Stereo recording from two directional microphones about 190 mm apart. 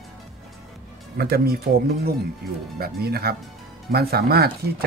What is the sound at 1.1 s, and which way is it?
Speech, 55° right (ahead or behind).